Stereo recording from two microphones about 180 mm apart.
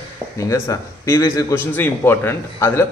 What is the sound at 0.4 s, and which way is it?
A man's voice, 15° left (ahead or behind).